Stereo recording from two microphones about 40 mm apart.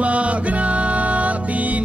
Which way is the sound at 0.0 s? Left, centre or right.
Right.